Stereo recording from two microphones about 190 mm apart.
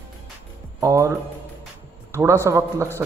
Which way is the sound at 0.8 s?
15° right (ahead or behind).